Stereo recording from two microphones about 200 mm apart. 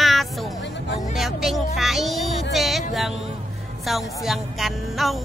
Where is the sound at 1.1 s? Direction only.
Centre (ahead or behind).